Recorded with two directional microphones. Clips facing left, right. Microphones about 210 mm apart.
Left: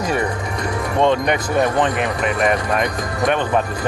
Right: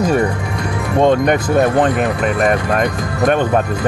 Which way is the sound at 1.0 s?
45° right (ahead or behind).